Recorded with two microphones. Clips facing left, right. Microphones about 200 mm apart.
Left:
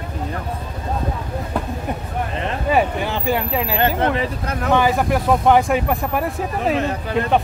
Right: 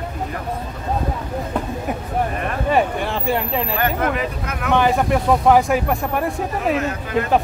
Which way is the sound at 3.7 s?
30° left (ahead or behind).